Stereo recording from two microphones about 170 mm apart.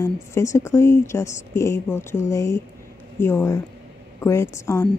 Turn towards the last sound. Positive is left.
turn(degrees=15)  # may be behind; listen again after turning